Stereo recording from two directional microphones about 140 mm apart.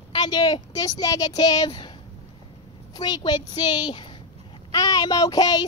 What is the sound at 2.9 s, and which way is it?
A woman's voice, 30° left (ahead or behind).